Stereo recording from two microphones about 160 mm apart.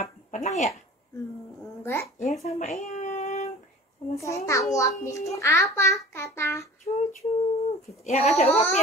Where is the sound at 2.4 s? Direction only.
45° left (ahead or behind).